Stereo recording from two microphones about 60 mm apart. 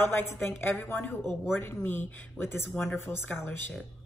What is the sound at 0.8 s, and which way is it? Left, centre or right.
Speech, left.